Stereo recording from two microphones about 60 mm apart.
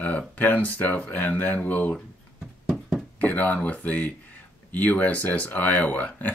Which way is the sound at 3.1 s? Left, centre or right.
Left.